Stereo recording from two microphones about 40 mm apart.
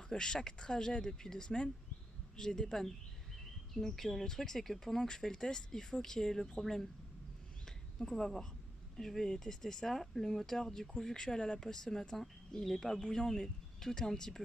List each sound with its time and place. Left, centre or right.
0.1 s speech: centre
8.0 s speech: centre